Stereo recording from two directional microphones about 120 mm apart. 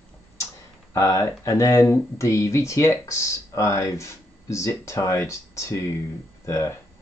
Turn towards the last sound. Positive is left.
turn(degrees=20)  # may be behind; listen again after turning